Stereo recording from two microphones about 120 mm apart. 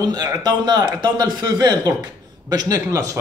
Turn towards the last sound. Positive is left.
turn(degrees=-30)  # may be behind; listen again after turning